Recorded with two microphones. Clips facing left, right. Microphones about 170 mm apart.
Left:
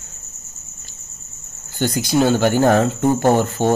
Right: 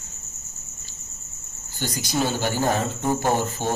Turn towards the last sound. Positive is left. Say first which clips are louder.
# left 8 dB
turn(degrees=55)  # may be behind; listen again after turning